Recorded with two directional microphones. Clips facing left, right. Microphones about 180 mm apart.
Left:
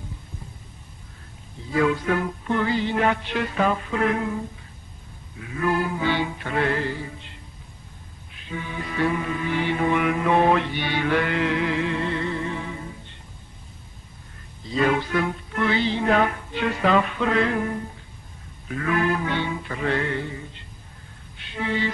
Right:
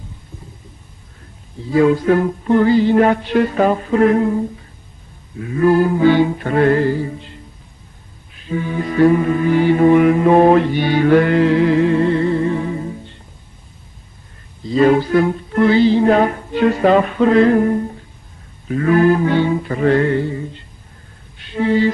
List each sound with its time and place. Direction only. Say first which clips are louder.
1.7 s music: right 9 dB; 35° right (ahead or behind)
8.5 s music: right 11 dB; 40° right (ahead or behind)
14.7 s music: right 10 dB; 35° right (ahead or behind)
21.4 s a sound: right 11 dB; 40° right (ahead or behind)